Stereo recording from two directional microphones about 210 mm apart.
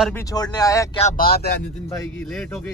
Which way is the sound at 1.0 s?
40° left (ahead or behind).